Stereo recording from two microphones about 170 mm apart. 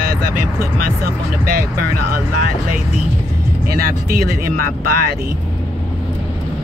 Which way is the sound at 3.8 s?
60° right (ahead or behind).